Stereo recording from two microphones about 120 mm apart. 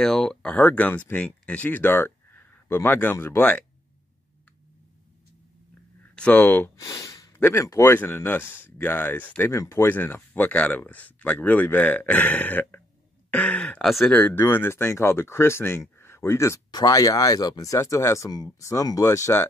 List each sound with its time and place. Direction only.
0.0 s speech: 5° left (ahead or behind)
6.1 s speech: 10° left (ahead or behind)
6.8 s snort: 30° left (ahead or behind)
7.3 s speech: 20° left (ahead or behind); by 14.1 s centre (ahead or behind)
14.1 s speech: 15° left (ahead or behind)